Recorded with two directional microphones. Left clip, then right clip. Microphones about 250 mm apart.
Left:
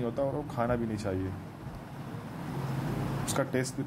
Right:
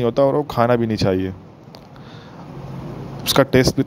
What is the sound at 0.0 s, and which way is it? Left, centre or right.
Speech, right.